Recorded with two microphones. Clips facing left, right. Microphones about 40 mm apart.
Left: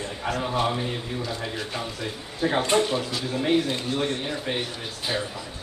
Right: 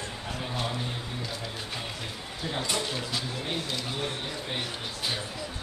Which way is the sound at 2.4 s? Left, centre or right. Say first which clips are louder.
Left 10 dB; left.